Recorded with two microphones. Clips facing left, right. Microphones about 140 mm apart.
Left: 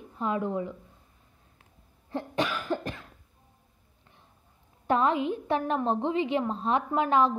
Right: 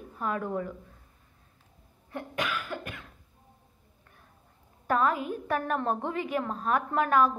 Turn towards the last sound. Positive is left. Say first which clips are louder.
# even
turn(degrees=20)  # may be behind; listen again after turning